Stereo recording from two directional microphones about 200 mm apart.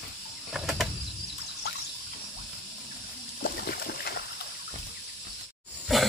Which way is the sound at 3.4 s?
50° left (ahead or behind).